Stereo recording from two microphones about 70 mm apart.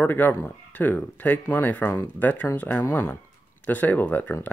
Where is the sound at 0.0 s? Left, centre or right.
Left.